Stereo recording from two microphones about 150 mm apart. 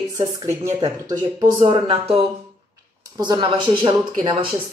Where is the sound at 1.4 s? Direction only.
35° right (ahead or behind).